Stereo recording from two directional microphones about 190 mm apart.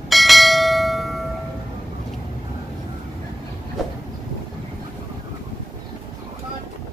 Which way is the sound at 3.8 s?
Centre (ahead or behind).